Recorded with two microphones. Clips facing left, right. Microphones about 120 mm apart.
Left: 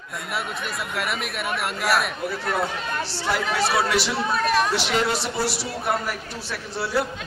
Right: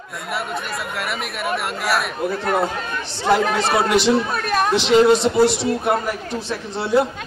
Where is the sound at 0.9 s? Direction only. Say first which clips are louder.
Right 1 dB; centre (ahead or behind).